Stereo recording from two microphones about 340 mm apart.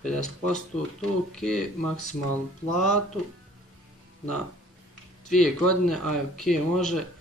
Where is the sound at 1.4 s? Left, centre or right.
Centre.